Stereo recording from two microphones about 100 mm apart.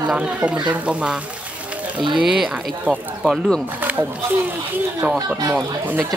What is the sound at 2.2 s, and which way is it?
Speech, 5° right (ahead or behind).